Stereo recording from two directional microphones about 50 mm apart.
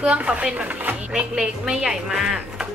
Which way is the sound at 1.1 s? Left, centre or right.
Centre.